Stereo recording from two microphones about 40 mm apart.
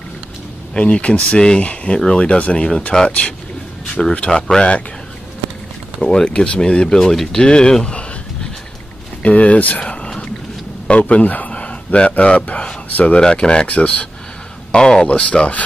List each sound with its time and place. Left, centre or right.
0.7 s speech: left
1.6 s speech: left
2.9 s speech: centre
4.6 s speech: left
5.9 s speech: left
9.2 s speech: left
9.8 s a sound: left
10.9 s speech: left
11.5 s speech: left
14.7 s speech: left
15.0 s speech: left